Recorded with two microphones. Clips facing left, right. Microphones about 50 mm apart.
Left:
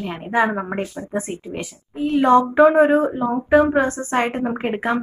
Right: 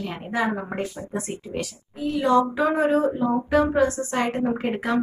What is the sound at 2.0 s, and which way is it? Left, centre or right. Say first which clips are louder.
Speech: left 5 dB; left.